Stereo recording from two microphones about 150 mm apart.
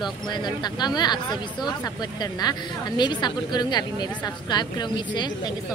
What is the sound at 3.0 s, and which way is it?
Speech, 30° left (ahead or behind).